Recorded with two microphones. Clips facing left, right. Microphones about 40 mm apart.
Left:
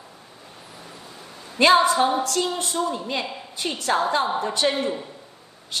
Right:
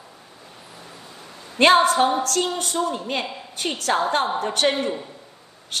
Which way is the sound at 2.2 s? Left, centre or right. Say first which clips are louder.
Right 1 dB; right.